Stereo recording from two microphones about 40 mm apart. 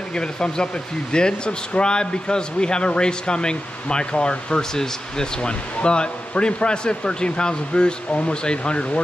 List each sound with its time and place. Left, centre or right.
0.1 s speech: left